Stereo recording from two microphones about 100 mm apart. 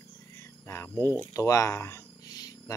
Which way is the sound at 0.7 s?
30° left (ahead or behind).